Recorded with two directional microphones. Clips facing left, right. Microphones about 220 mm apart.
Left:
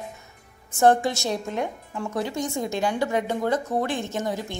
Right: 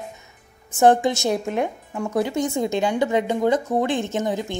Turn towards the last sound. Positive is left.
turn(degrees=-20)  # may be behind; listen again after turning